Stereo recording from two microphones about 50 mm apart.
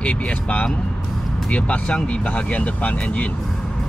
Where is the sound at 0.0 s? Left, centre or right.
Left.